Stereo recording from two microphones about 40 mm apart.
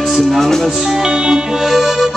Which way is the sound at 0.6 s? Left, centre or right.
Centre.